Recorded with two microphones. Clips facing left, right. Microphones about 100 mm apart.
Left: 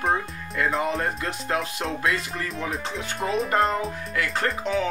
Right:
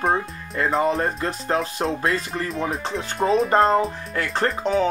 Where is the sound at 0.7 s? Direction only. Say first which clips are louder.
Right 4 dB; 35° right (ahead or behind).